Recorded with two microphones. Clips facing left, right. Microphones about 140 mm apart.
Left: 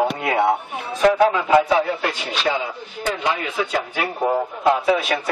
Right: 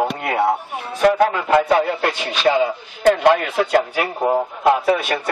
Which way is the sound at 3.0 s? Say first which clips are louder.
Right 9 dB; 60° right (ahead or behind).